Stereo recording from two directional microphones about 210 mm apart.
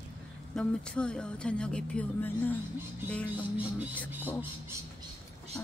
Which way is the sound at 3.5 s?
5° right (ahead or behind).